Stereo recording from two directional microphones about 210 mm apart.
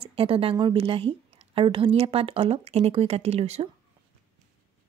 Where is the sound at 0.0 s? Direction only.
25° right (ahead or behind).